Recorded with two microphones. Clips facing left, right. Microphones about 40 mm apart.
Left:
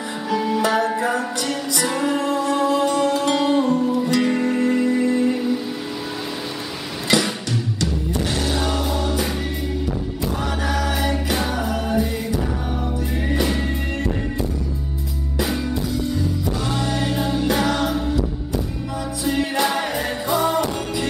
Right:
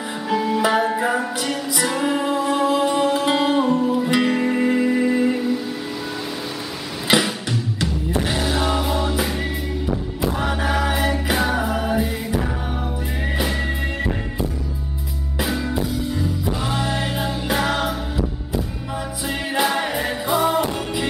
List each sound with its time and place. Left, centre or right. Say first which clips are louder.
0.6 s music: right 1 dB; centre
7.1 s music: right 1 dB; right
15.9 s music: left 1 dB; centre
19.3 s music: right 1 dB; centre